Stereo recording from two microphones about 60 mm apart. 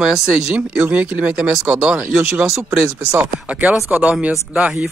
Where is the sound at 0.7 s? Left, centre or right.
Right.